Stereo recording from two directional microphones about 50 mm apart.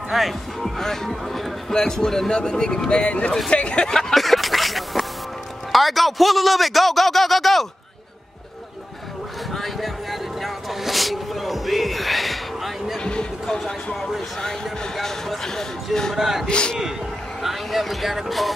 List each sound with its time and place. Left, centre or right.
0.1 s speech: centre
3.9 s a sound: centre
5.7 s a man's voice: centre
9.5 s a sound: centre
13.0 s music: centre
15.0 s speech: centre
16.2 s speech: centre
16.4 s speech: centre
17.4 s speech: centre